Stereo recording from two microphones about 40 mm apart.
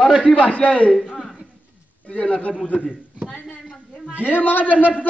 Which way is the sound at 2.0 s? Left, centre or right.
Left.